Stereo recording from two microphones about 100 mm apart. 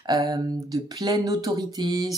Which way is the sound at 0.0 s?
40° right (ahead or behind).